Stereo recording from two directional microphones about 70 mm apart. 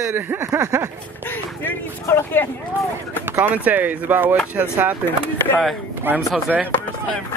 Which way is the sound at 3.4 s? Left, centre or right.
Right.